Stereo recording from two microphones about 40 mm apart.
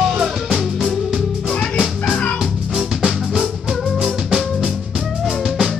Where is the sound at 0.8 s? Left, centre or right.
Centre.